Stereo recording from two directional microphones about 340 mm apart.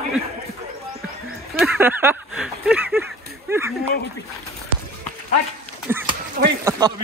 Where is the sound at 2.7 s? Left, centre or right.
Centre.